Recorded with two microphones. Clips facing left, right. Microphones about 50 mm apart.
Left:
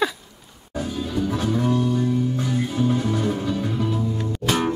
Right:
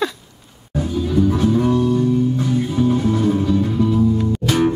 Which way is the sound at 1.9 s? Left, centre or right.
Centre.